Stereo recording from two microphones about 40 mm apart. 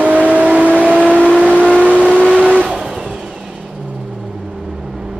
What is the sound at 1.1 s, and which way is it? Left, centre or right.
Vehicle, left.